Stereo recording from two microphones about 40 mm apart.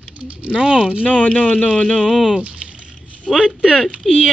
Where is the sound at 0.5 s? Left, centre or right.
Right.